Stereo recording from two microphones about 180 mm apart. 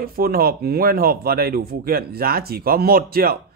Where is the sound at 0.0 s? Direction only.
55° right (ahead or behind).